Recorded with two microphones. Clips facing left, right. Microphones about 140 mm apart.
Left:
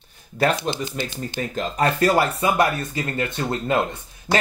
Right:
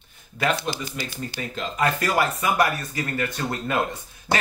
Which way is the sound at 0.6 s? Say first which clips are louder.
Left 4 dB; 20° left (ahead or behind).